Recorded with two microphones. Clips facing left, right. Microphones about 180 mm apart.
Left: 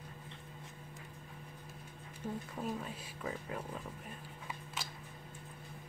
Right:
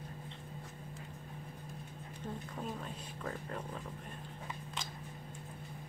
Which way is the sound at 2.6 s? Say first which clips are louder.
Left 3 dB; 5° left (ahead or behind).